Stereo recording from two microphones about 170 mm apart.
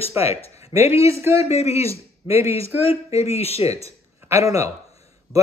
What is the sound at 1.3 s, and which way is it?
Speech, 15° right (ahead or behind).